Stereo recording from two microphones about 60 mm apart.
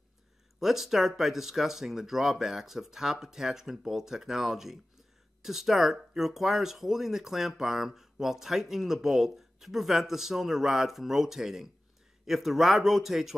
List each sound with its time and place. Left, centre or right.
0.6 s speech: centre